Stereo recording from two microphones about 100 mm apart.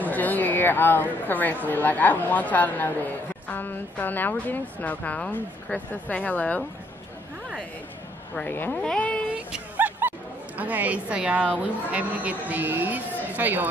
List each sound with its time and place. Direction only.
0.0 s a woman's voice: 15° left (ahead or behind)
8.4 s a woman's voice: 20° left (ahead or behind)
9.3 s music: 15° right (ahead or behind)
10.6 s a woman's voice: 15° right (ahead or behind)